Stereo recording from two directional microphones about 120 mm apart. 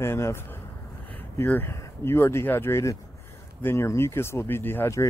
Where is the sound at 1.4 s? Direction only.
20° left (ahead or behind).